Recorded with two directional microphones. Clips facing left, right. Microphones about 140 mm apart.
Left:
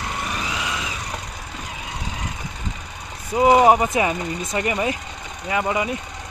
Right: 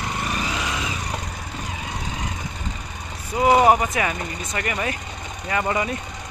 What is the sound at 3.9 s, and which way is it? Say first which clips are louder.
Speech: left 4 dB; 20° left (ahead or behind).